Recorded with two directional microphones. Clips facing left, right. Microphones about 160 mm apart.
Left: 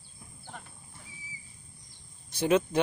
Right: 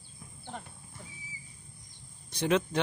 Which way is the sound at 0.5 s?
25° right (ahead or behind).